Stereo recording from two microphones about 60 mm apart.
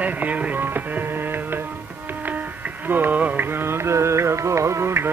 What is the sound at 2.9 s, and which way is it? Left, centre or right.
Music, right.